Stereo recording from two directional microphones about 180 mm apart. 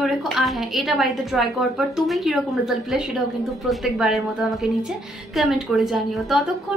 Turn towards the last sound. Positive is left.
turn(degrees=0)  # may be behind; listen again after turning